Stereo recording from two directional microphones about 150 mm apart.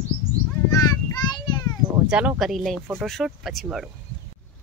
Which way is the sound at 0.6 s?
25° left (ahead or behind).